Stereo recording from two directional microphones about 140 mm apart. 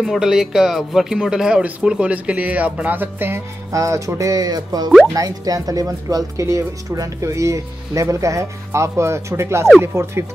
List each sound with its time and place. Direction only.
0.0 s speech: 5° right (ahead or behind); by 10.2 s 20° right (ahead or behind)